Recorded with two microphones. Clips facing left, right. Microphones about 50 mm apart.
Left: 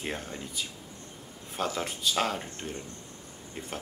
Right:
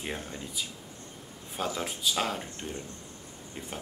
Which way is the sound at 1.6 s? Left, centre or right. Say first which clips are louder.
Left 1 dB; centre.